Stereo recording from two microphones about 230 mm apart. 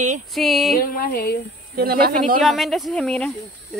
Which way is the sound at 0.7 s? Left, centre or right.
Left.